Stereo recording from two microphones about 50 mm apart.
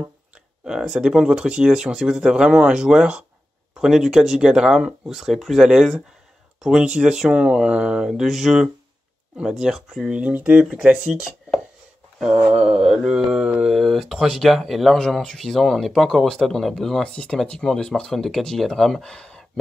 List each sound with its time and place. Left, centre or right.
0.7 s speech: centre
3.8 s speech: centre
10.0 s speech: right
12.2 s mantra: centre
12.5 s speech: centre
13.7 s speech: centre
17.0 s speech: centre
18.1 s speech: centre